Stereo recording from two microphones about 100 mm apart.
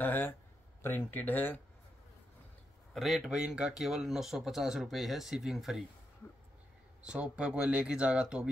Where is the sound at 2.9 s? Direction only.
Centre (ahead or behind).